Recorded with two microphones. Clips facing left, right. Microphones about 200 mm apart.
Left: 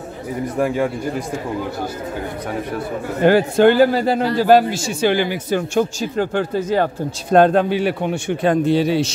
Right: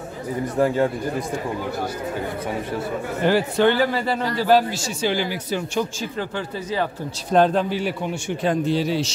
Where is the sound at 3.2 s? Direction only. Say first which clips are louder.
Left 6 dB; 50° left (ahead or behind).